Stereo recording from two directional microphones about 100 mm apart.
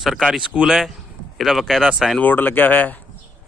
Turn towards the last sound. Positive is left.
turn(degrees=20)  # may be behind; listen again after turning